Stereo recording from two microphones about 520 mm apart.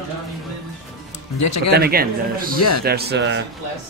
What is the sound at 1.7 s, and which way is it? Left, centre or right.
Speech, centre.